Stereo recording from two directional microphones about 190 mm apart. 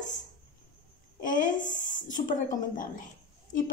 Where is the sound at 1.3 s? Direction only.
45° left (ahead or behind).